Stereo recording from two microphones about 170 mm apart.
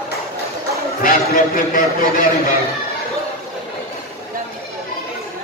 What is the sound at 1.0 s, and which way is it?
Speech, 55° left (ahead or behind).